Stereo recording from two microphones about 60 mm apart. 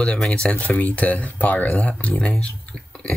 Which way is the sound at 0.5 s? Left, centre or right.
Left.